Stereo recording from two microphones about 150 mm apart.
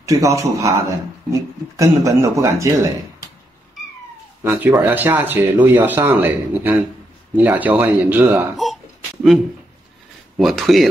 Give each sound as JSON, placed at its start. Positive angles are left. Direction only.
{"t": 0.0, "sound": "a man's voice", "side_deg": -20}
{"t": 4.4, "sound": "speech", "side_deg": -10}
{"t": 10.3, "sound": "speech", "side_deg": 0}